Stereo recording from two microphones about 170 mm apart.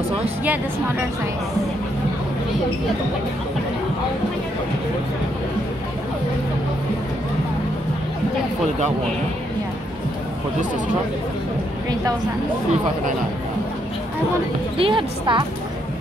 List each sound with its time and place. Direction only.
14.8 s a woman's voice: 30° right (ahead or behind)